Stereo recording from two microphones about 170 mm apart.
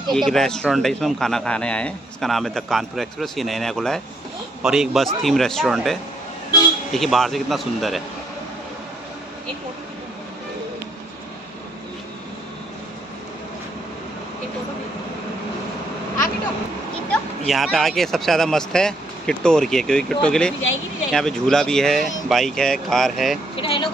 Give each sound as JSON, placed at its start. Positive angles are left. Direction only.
{"t": 0.1, "sound": "a man's voice", "side_deg": 0}
{"t": 17.1, "sound": "a man's voice", "side_deg": 0}
{"t": 23.5, "sound": "speech", "side_deg": 30}